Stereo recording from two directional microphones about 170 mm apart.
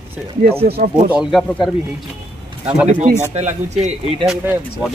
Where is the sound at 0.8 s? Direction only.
55° right (ahead or behind).